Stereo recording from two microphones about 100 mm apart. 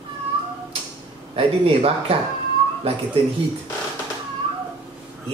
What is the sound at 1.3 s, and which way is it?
Speech, 70° right (ahead or behind).